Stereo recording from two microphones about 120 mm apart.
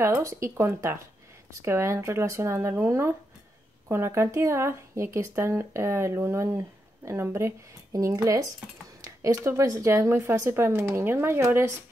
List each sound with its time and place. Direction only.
0.0 s speech: 25° right (ahead or behind)